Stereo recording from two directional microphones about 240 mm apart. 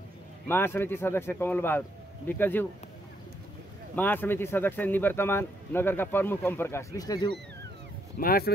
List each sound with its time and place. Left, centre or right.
0.5 s speech: centre
3.9 s speech: centre
8.2 s speech: left